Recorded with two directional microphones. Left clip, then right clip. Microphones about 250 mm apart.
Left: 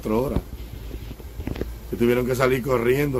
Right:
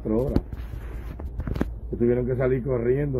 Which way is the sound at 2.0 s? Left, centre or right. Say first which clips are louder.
Left 3 dB; centre.